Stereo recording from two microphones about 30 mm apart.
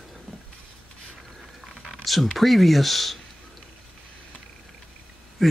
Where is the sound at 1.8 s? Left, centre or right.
Centre.